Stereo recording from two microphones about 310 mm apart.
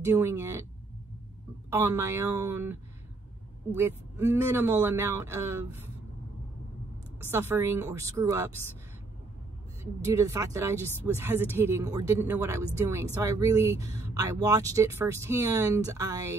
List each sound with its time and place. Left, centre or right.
0.0 s speech: centre
1.7 s speech: centre
7.2 s speech: centre
10.0 s speech: centre